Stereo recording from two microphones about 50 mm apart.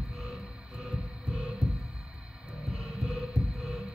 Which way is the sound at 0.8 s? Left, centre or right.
Centre.